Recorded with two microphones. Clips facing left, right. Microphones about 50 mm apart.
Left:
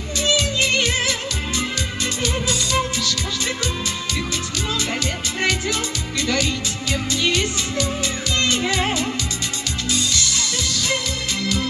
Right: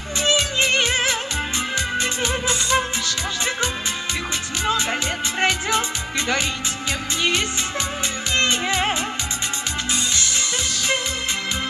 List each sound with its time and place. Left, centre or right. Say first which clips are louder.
0.2 s music: even; right
5.4 s music: right 1 dB; right
8.4 s music: even; right